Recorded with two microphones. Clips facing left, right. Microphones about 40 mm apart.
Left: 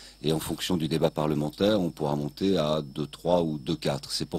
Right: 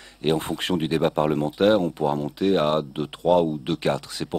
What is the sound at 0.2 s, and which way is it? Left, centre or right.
Speech, right.